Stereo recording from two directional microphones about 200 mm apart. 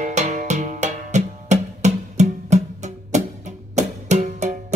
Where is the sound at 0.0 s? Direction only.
35° right (ahead or behind).